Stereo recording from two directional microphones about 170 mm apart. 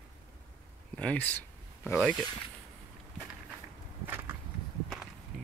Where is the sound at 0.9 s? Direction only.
10° left (ahead or behind).